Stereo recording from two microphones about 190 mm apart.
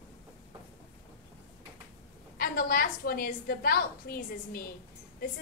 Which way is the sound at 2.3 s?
50° left (ahead or behind).